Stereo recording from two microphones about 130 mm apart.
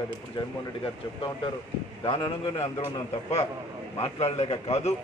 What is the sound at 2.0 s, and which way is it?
Speech, 40° left (ahead or behind).